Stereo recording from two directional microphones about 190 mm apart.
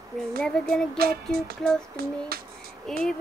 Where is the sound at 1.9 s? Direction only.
55° right (ahead or behind).